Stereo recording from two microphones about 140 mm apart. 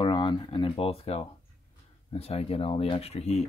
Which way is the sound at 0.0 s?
35° left (ahead or behind).